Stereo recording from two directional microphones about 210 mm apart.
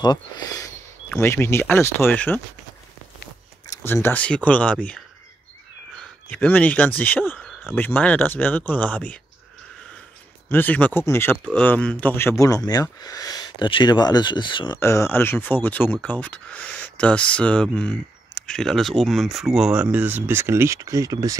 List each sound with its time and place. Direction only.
0.0 s speech: 20° left (ahead or behind)
3.6 s speech: 15° left (ahead or behind)
10.5 s speech: 10° left (ahead or behind); by 21.4 s 15° right (ahead or behind)